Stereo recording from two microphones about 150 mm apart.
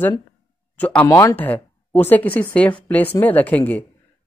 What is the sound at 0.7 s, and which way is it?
Speech, 10° left (ahead or behind).